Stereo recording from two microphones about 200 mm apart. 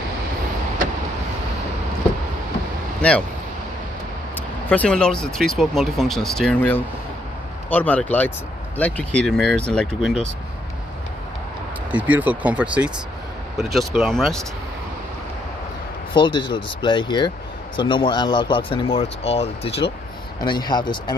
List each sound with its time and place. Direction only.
3.0 s speech: 5° left (ahead or behind)
4.6 s speech: 5° left (ahead or behind)
11.9 s speech: 10° right (ahead or behind)
16.1 s speech: 25° left (ahead or behind)